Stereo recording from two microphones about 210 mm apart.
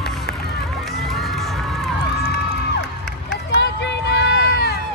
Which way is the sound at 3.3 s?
55° left (ahead or behind).